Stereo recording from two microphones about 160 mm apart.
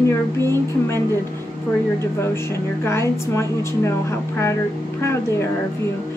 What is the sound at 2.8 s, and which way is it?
A woman's voice, 15° left (ahead or behind).